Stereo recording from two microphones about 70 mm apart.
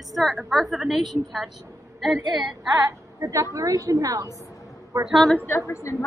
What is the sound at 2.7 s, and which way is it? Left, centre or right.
A woman's voice, right.